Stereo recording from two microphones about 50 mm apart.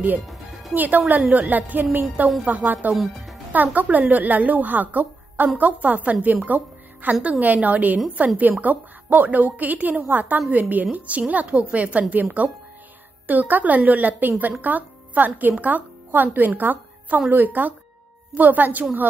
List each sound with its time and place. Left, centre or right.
0.3 s music: centre
0.7 s a woman's voice: right
2.9 s speech: centre
3.5 s a woman's voice: right
6.4 s music: right
7.2 s a woman's voice: right
13.3 s a woman's voice: right